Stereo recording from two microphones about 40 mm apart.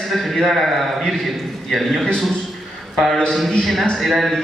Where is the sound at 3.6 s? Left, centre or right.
Centre.